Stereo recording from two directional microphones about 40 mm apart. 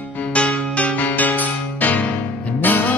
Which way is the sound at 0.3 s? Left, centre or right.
Left.